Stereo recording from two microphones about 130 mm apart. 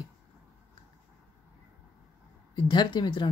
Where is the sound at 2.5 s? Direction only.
35° left (ahead or behind).